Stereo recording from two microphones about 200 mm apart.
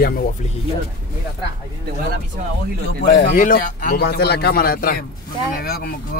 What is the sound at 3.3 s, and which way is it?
A man's voice, 45° left (ahead or behind).